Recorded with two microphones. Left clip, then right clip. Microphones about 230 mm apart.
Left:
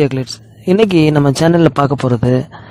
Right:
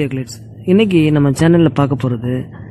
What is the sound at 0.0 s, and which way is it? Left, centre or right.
Speech, left.